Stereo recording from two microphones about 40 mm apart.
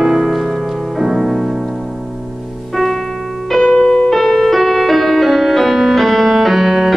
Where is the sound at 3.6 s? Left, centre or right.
Centre.